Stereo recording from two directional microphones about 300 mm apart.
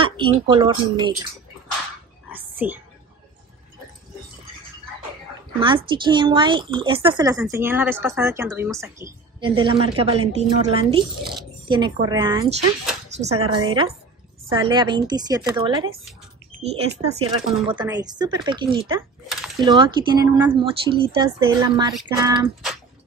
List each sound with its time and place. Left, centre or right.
0.0 s speech: centre
2.2 s oink: centre
5.6 s speech: centre
19.2 s a sound: centre
20.2 s speech: centre